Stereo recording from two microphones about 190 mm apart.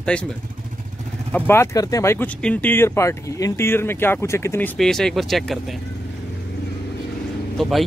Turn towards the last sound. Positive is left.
turn(degrees=0)  # may be behind; listen again after turning